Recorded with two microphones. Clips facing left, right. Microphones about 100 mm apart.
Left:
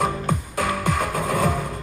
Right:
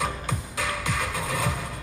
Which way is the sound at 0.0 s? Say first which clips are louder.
Left 6 dB; 50° left (ahead or behind).